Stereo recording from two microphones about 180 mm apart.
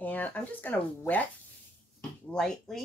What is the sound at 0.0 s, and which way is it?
Speech, 10° left (ahead or behind).